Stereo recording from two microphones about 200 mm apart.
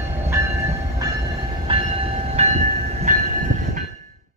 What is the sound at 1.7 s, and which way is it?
Train, 25° right (ahead or behind).